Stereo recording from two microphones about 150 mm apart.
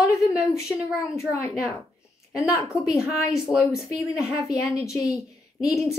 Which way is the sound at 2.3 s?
20° left (ahead or behind).